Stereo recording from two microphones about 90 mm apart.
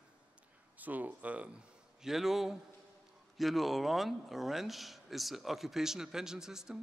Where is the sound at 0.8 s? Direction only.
20° right (ahead or behind).